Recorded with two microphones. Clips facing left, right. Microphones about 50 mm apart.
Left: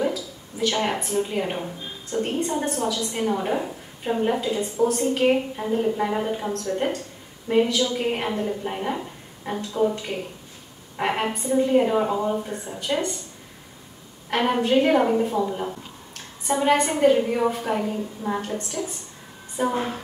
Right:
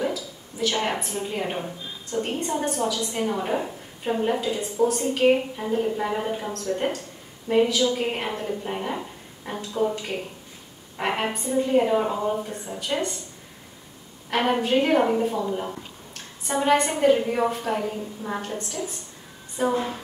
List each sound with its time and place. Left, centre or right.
0.0 s a woman's voice: centre
14.3 s a woman's voice: centre